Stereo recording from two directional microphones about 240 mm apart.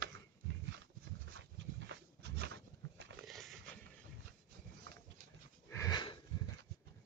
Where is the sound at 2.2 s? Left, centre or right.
Right.